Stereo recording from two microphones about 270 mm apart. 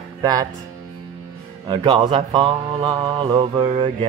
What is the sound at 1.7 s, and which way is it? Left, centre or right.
Speech, centre.